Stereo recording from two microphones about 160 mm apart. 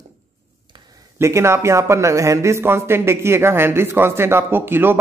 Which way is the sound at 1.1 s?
15° right (ahead or behind).